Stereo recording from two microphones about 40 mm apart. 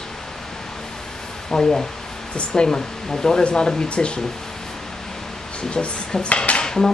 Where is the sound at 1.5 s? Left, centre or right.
Centre.